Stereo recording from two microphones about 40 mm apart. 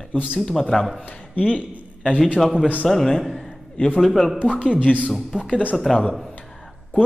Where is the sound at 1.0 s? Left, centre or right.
Left.